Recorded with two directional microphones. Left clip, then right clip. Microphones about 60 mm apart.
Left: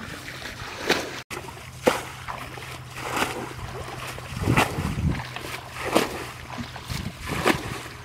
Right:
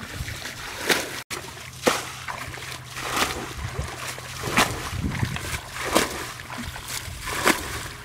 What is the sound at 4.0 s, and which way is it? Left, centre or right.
Boat, right.